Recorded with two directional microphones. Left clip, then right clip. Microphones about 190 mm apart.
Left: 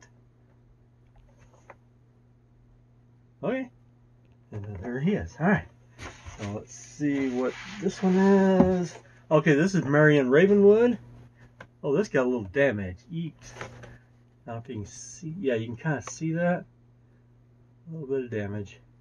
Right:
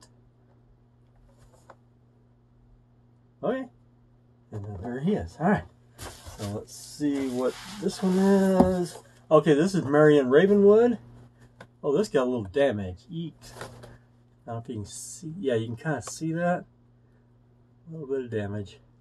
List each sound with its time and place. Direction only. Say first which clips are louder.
3.3 s speech: right 1 dB; 15° left (ahead or behind)
4.6 s a sound: left 1 dB; 15° left (ahead or behind)
6.3 s speech: right 1 dB; centre (ahead or behind)
9.1 s speech: right 2 dB; 15° left (ahead or behind); by 15.7 s centre (ahead or behind)
15.7 s speech: even; 15° left (ahead or behind)
18.0 s speech: even; 10° left (ahead or behind)